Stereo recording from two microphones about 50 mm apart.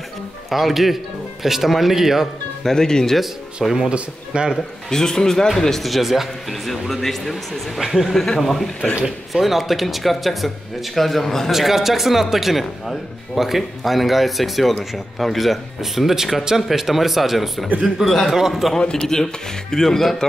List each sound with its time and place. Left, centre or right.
0.5 s speech: centre
2.6 s speech: centre
3.6 s speech: centre
3.9 s speech: centre
4.8 s speech: centre
7.8 s speech: centre
8.1 s speech: centre
8.9 s speech: centre
11.5 s speech: centre
18.0 s speech: centre
18.8 s speech: centre